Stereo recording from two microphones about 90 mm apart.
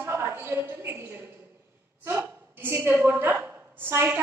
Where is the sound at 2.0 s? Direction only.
20° right (ahead or behind).